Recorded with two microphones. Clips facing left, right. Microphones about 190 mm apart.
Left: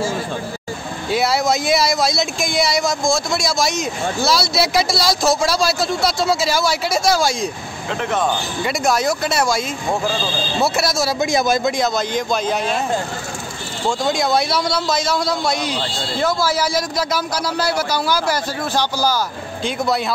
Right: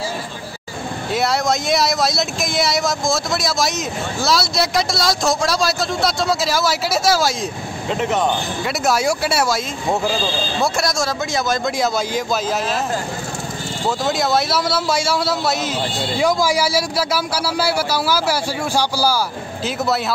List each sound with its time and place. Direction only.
1.1 s speech: centre (ahead or behind)
8.0 s a man's voice: 20° right (ahead or behind)
8.6 s a man's voice: 5° right (ahead or behind)
10.6 s a man's voice: 5° left (ahead or behind)
11.8 s speech: 5° right (ahead or behind)
13.8 s a man's voice: 5° right (ahead or behind)